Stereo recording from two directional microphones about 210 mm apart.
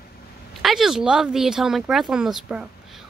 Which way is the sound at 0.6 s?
Centre (ahead or behind).